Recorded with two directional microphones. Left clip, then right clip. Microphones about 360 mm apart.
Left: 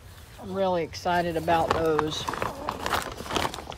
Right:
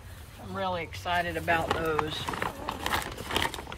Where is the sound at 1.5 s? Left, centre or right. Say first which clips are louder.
Left 5 dB; centre.